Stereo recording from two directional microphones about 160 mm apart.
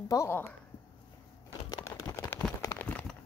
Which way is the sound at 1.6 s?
20° left (ahead or behind).